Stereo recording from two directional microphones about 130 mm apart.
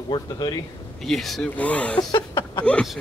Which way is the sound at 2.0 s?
35° left (ahead or behind).